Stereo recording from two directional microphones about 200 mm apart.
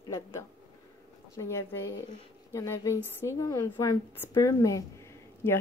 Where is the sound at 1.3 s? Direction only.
15° left (ahead or behind).